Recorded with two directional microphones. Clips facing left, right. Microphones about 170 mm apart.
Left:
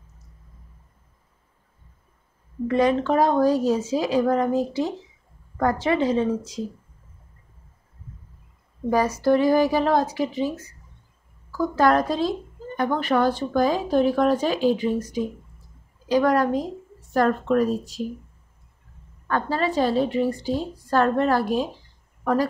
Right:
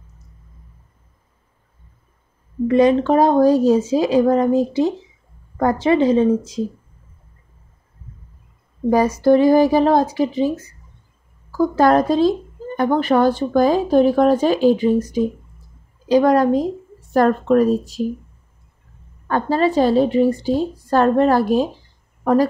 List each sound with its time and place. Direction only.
2.7 s speech: 20° right (ahead or behind)
9.2 s speech: 25° right (ahead or behind)
11.7 s speech: 25° right (ahead or behind)
12.7 s speech: 45° right (ahead or behind)
13.0 s speech: 25° right (ahead or behind)
17.2 s speech: 40° right (ahead or behind)
19.2 s speech: 30° right (ahead or behind)